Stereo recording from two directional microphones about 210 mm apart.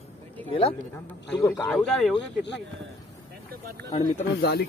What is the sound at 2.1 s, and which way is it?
Speech, 55° left (ahead or behind).